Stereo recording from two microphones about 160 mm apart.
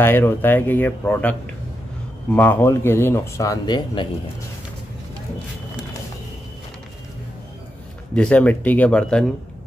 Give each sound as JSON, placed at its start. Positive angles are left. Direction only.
{"t": 0.0, "sound": "speech", "side_deg": 15}
{"t": 2.3, "sound": "speech", "side_deg": 15}
{"t": 8.1, "sound": "speech", "side_deg": 5}